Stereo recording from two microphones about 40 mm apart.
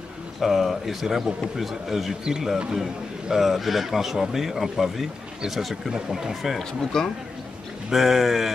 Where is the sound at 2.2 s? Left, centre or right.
Centre.